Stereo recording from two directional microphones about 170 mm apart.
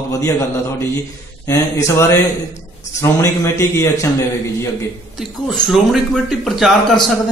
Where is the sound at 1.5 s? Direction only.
15° left (ahead or behind).